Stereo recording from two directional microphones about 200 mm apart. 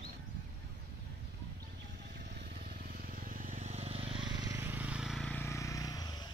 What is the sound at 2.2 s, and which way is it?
Vehicle, 55° right (ahead or behind).